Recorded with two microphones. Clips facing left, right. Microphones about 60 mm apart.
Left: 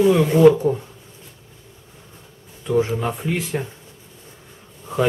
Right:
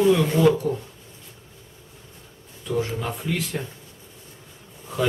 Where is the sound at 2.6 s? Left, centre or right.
Left.